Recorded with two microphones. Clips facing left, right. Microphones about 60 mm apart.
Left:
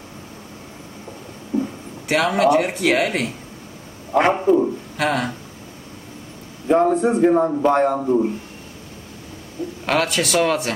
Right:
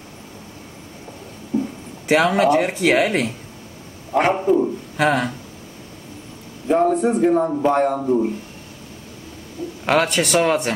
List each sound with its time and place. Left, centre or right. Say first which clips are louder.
1.5 s a sound: even; left
2.0 s speech: right 1 dB; right
4.2 s a man's voice: left 1 dB; centre
4.9 s speech: right 4 dB; centre
6.7 s a man's voice: left 1 dB; centre
8.0 s speech: even; centre
9.6 s speech: left 1 dB; left
10.0 s speech: right 1 dB; right